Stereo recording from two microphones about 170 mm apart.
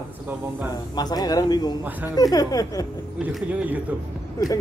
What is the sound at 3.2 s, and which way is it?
Speech, 5° right (ahead or behind).